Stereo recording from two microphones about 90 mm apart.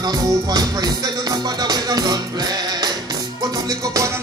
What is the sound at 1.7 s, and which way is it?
Music, 50° right (ahead or behind).